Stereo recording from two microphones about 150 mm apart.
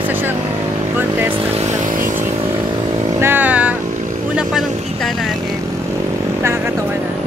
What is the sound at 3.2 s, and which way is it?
Vehicle, 10° right (ahead or behind).